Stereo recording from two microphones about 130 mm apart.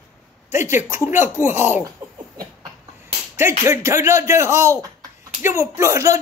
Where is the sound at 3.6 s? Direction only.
20° right (ahead or behind).